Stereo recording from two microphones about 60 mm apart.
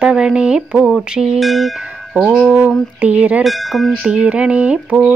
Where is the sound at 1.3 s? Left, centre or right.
Centre.